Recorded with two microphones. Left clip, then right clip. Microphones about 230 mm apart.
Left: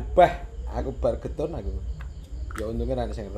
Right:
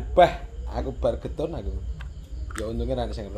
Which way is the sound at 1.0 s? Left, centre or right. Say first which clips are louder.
Even; right.